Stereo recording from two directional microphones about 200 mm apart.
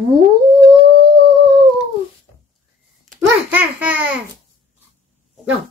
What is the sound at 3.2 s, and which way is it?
A child's voice, 10° right (ahead or behind).